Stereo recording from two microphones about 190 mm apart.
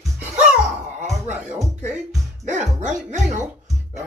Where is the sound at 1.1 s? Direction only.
5° right (ahead or behind).